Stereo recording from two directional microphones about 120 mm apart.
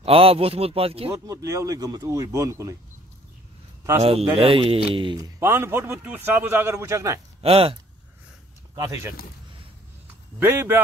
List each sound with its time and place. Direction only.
0.0 s a man's voice: 50° right (ahead or behind)
1.1 s a man's voice: 25° right (ahead or behind)
4.0 s a man's voice: 55° right (ahead or behind)
5.1 s a man's voice: 25° right (ahead or behind)
7.4 s a man's voice: 55° right (ahead or behind)
8.7 s speech: 30° right (ahead or behind)
10.4 s a man's voice: 20° right (ahead or behind)